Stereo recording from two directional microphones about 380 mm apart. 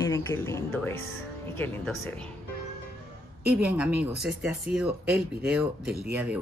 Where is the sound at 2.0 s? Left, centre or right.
Centre.